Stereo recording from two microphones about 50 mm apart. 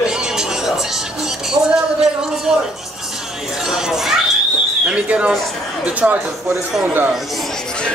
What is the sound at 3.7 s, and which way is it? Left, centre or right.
Speech, centre.